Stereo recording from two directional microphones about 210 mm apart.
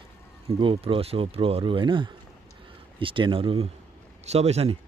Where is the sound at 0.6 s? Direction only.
25° right (ahead or behind).